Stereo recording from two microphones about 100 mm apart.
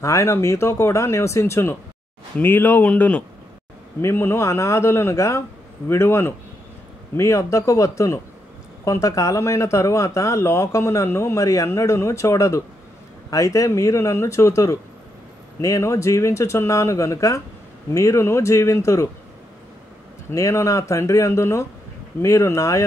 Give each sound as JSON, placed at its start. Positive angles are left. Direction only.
{"t": 0.0, "sound": "speech", "side_deg": 30}
{"t": 4.0, "sound": "speech", "side_deg": 25}
{"t": 20.2, "sound": "speech", "side_deg": 30}